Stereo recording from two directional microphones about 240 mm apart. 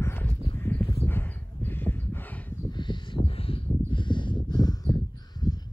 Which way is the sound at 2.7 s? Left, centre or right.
Centre.